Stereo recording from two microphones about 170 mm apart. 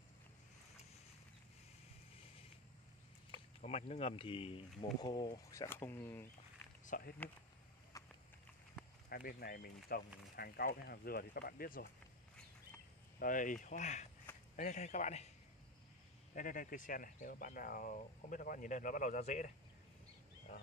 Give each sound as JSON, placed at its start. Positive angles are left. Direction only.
{"t": 3.6, "sound": "speech", "side_deg": 40}
{"t": 6.9, "sound": "speech", "side_deg": 55}
{"t": 7.9, "sound": "a sound", "side_deg": 20}
{"t": 9.1, "sound": "speech", "side_deg": 65}
{"t": 13.2, "sound": "speech", "side_deg": 50}
{"t": 16.3, "sound": "speech", "side_deg": 50}
{"t": 20.5, "sound": "speech", "side_deg": 60}